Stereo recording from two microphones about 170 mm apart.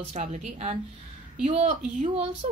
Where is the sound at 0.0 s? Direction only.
40° right (ahead or behind).